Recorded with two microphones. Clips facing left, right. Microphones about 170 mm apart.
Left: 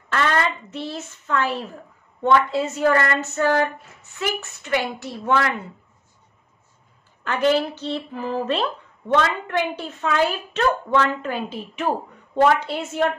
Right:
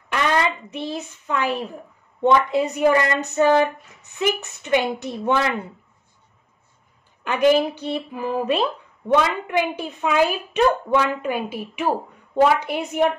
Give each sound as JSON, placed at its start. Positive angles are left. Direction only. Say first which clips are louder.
{"t": 0.1, "sound": "a woman's voice", "louder": "right 1 dB", "side_deg": -15}
{"t": 7.2, "sound": "speech", "louder": "right 3 dB", "side_deg": -15}